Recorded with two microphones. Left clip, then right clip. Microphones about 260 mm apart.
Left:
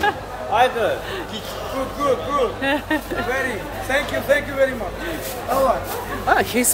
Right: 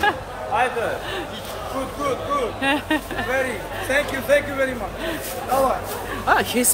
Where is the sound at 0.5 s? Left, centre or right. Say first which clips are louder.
Left 4 dB; left.